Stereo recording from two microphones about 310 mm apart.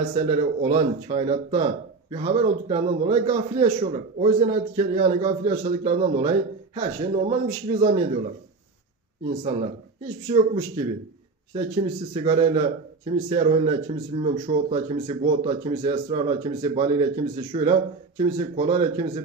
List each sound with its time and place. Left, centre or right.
0.1 s speech: centre
10.2 s speech: centre
12.1 s speech: centre